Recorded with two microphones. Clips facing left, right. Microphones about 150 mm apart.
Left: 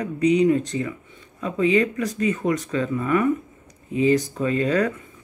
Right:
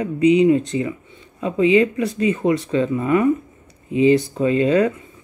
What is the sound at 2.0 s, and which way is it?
Speech, 40° left (ahead or behind).